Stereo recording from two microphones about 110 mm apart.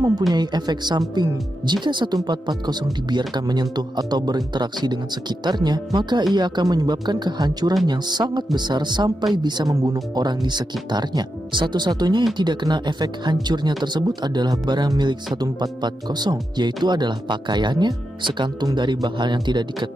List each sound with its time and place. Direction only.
0.3 s speech: 40° right (ahead or behind)